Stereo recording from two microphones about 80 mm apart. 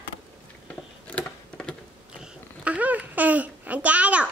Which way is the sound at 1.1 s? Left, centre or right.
Centre.